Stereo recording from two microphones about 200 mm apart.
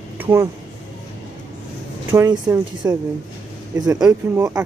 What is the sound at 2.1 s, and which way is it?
Speech, 15° right (ahead or behind).